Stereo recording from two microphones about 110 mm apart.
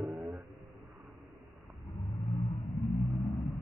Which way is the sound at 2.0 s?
65° left (ahead or behind).